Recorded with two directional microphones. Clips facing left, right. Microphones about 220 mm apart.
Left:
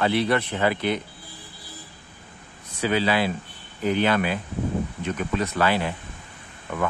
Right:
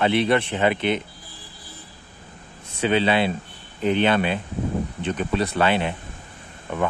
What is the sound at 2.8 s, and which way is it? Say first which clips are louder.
Speech: right 2 dB; 25° right (ahead or behind).